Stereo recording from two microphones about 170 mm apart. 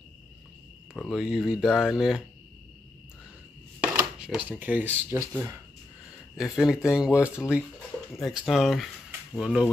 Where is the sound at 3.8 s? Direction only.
5° right (ahead or behind).